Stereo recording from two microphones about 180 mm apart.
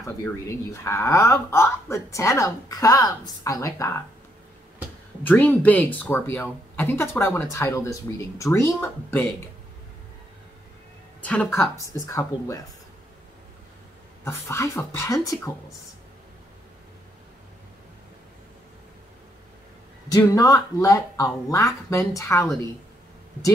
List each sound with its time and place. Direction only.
0.0 s speech: 15° left (ahead or behind)
5.2 s speech: 10° left (ahead or behind)
11.1 s speech: 10° left (ahead or behind)
14.2 s speech: 15° left (ahead or behind)
20.1 s speech: 20° left (ahead or behind)